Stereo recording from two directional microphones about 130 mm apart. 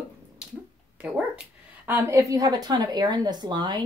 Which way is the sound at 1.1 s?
10° right (ahead or behind).